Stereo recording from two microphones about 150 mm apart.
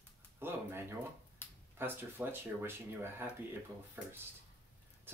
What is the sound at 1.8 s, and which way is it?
Speech, 15° right (ahead or behind).